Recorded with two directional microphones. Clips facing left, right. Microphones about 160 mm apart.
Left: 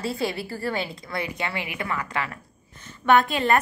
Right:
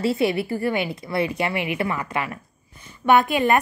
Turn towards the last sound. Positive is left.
turn(degrees=-15)  # may be behind; listen again after turning